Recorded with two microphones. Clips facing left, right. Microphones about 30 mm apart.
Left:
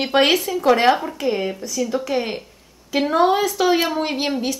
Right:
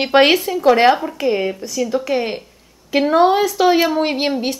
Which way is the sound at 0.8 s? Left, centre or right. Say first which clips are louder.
Right 3 dB; centre.